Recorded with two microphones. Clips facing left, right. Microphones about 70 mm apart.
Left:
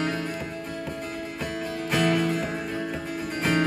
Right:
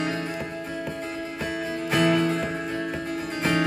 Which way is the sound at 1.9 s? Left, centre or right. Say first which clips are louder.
Right 2 dB; centre.